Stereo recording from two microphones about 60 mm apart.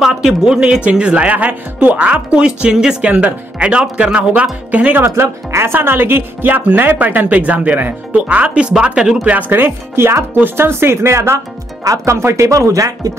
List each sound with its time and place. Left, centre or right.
0.0 s speech: centre; by 5.0 s right
5.0 s speech: right; by 9.3 s centre
9.3 s speech: right
11.8 s speech: right